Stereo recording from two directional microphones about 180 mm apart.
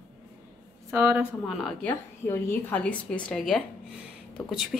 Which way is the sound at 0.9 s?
15° right (ahead or behind).